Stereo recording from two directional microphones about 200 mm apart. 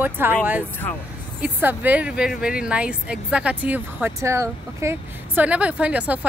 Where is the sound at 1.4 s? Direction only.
10° right (ahead or behind).